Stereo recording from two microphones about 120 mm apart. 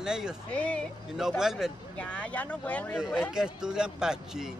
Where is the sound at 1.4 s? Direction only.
5° right (ahead or behind).